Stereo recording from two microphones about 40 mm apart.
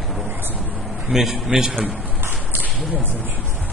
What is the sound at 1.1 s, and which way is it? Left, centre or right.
Speech, centre.